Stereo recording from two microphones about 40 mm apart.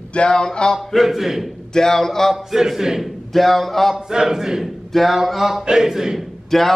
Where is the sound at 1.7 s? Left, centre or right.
Centre.